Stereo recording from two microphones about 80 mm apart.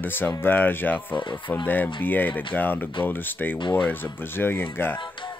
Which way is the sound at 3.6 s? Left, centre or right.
Left.